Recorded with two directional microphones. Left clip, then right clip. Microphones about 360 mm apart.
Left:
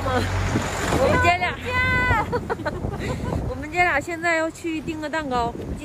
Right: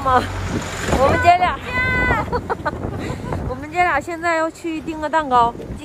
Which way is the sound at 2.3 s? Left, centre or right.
Centre.